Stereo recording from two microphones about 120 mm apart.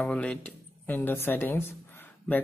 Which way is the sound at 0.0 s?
10° left (ahead or behind).